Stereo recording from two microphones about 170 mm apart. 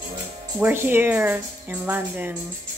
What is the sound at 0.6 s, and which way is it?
Speech, 10° right (ahead or behind).